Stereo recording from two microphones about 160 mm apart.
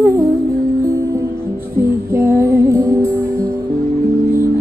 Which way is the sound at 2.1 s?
15° right (ahead or behind).